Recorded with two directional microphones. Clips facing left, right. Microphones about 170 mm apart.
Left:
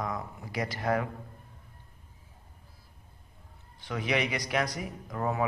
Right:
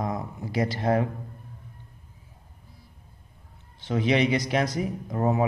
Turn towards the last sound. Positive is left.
turn(degrees=-25)  # may be behind; listen again after turning